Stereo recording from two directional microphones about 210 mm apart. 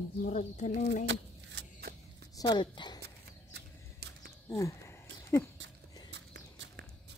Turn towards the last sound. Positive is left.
turn(degrees=-55)  # may be behind; listen again after turning